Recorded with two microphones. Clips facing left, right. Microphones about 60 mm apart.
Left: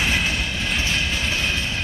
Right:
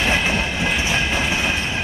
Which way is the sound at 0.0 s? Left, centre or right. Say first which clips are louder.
Right 3 dB; right.